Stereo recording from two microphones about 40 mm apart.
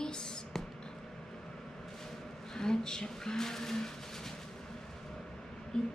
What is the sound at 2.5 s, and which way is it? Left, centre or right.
Speech, centre.